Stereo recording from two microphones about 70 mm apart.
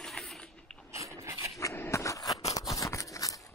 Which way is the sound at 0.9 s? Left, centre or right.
Right.